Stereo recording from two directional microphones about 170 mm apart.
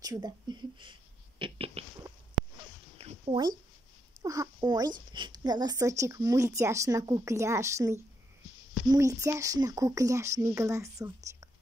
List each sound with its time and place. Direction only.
0.0 s speech: 25° right (ahead or behind)
1.4 s a sound: 30° right (ahead or behind)
4.2 s speech: 20° right (ahead or behind)